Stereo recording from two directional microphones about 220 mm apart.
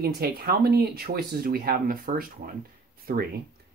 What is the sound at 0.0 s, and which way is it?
Speech, 45° right (ahead or behind).